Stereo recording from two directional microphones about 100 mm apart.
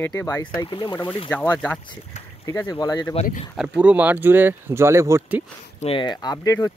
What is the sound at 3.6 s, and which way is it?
Speech, 15° right (ahead or behind).